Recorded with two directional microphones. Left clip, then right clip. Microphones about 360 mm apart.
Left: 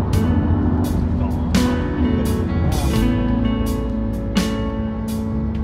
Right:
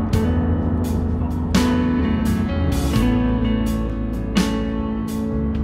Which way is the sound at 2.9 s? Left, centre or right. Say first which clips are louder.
Right 1 dB; centre.